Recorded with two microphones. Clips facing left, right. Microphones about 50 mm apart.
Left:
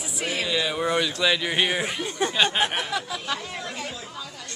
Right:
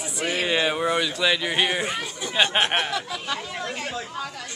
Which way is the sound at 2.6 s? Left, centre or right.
Right.